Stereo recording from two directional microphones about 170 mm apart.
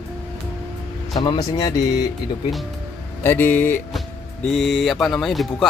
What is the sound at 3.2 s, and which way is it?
Speech, 10° left (ahead or behind).